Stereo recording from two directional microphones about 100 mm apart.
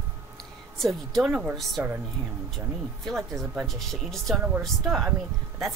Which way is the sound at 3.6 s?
Centre (ahead or behind).